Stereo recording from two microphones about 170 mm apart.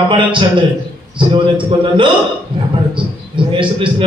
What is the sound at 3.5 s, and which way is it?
Speech, 30° right (ahead or behind).